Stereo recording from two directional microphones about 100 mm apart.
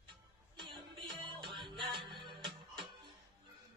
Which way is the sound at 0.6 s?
55° right (ahead or behind).